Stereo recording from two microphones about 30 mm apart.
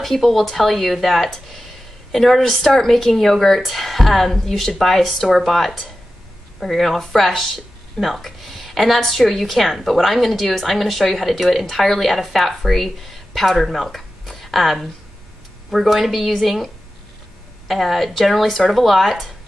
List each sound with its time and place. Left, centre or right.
0.0 s speech: centre